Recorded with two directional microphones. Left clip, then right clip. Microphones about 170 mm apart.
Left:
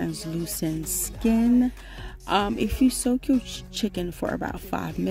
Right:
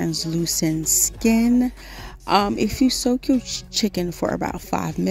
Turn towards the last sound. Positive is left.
turn(degrees=-40)  # may be behind; listen again after turning